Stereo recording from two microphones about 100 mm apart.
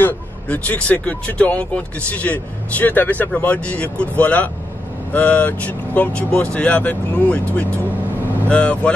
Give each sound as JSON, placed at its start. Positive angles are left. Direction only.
{"t": 0.0, "sound": "speech", "side_deg": 15}